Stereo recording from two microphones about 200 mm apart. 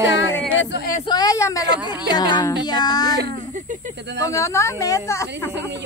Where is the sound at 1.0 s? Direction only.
20° left (ahead or behind).